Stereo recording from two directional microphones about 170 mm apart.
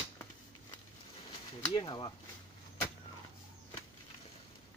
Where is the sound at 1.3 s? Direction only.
30° left (ahead or behind).